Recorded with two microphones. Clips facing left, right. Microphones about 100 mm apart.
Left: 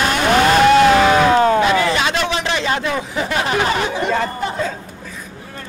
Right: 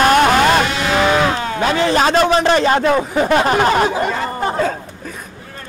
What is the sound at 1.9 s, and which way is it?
Speech, 40° right (ahead or behind).